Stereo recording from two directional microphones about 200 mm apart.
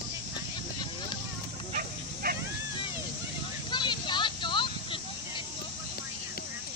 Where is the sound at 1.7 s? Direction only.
45° right (ahead or behind).